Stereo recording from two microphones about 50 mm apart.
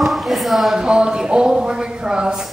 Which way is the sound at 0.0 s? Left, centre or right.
Centre.